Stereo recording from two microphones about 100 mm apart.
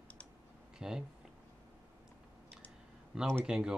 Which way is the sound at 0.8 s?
5° right (ahead or behind).